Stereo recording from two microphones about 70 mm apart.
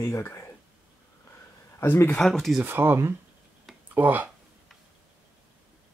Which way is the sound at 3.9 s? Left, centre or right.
Right.